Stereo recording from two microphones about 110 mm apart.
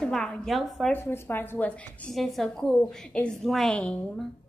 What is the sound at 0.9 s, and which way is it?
A woman's voice, 20° left (ahead or behind).